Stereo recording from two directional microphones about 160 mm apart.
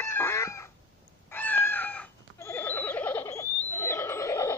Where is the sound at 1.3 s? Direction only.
10° left (ahead or behind).